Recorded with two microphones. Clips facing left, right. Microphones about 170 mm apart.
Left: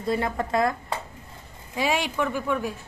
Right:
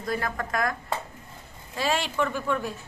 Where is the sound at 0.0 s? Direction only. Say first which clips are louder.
Left 4 dB; 25° left (ahead or behind).